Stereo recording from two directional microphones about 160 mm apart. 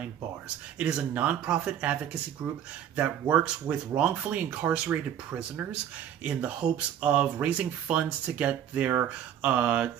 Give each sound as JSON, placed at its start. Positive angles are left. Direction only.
{"t": 0.7, "sound": "speech", "side_deg": -10}